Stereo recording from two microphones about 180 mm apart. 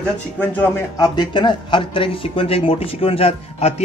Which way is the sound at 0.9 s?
20° left (ahead or behind).